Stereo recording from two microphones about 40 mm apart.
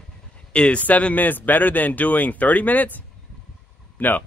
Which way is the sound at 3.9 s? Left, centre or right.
Left.